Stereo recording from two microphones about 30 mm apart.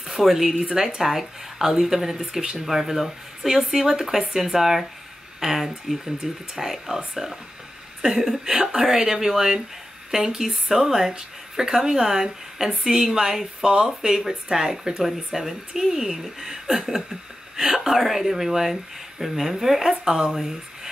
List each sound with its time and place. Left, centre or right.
0.0 s a woman's voice: centre
20.2 s speech: centre